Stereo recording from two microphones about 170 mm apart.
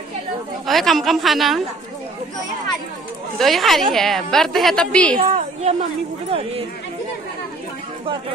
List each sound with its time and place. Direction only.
0.7 s a woman's voice: centre (ahead or behind)
3.3 s a woman's voice: centre (ahead or behind)
5.3 s a sound: 45° right (ahead or behind)